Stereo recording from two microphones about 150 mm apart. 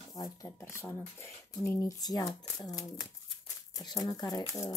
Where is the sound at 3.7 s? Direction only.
25° left (ahead or behind).